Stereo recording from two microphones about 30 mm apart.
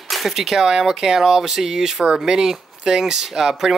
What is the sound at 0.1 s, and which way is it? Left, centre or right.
Speech, centre.